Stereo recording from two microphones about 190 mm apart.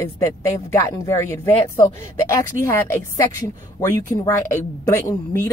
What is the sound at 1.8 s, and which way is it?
Speech, 30° left (ahead or behind).